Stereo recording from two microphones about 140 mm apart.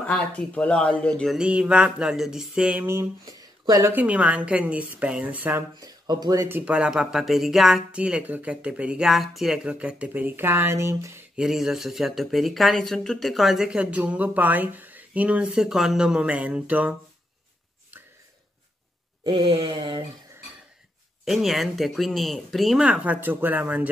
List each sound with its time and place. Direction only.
0.0 s speech: 10° left (ahead or behind)
2.8 s speech: 20° right (ahead or behind)
3.9 s speech: 10° right (ahead or behind)
5.8 s speech: 30° right (ahead or behind)
6.6 s speech: 5° right (ahead or behind)
11.3 s speech: 5° right (ahead or behind)
19.2 s a sound: 40° right (ahead or behind)
21.3 s speech: centre (ahead or behind)